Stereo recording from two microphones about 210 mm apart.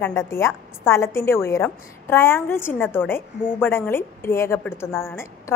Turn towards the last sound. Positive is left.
turn(degrees=10)  # may be behind; listen again after turning